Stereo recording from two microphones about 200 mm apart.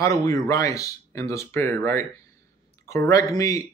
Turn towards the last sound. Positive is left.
turn(degrees=15)  # may be behind; listen again after turning